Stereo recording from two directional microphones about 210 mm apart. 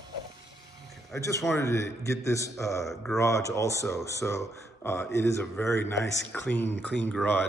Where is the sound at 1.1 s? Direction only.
15° left (ahead or behind).